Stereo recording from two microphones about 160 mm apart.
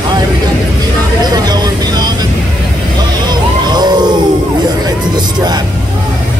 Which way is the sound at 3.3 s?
25° right (ahead or behind).